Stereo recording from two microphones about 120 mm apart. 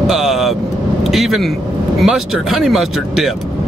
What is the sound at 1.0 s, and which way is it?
Speech, centre (ahead or behind).